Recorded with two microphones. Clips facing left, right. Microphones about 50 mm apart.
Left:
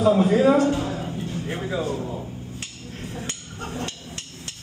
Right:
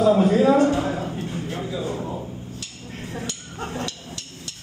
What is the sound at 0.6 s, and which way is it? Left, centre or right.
Speech, right.